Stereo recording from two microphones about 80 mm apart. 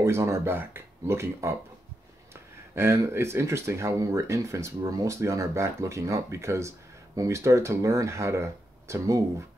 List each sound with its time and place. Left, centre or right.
0.0 s speech: right
2.7 s speech: right